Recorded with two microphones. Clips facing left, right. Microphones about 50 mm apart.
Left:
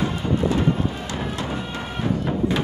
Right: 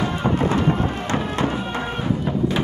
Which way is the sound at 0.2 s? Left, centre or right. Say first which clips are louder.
Right 2 dB; right.